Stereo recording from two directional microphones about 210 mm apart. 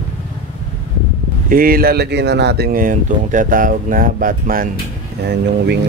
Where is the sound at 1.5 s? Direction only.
45° right (ahead or behind).